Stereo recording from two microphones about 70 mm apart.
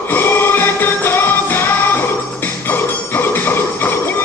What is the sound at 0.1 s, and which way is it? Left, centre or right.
Music, left.